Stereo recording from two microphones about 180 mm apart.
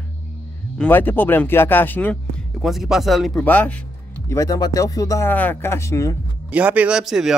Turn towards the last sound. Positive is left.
turn(degrees=-5)  # may be behind; listen again after turning